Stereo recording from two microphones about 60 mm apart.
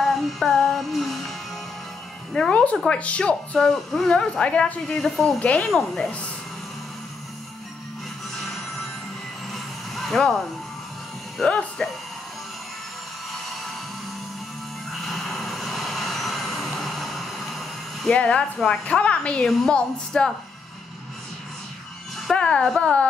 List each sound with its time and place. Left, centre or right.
0.0 s music: centre
2.3 s speech: centre
3.5 s a woman's voice: centre
4.1 s a woman's voice: centre
9.5 s a sound: centre
11.4 s a woman's voice: centre
14.9 s vehicle: centre
18.1 s a woman's voice: centre
19.4 s a woman's voice: centre
22.3 s a woman's voice: centre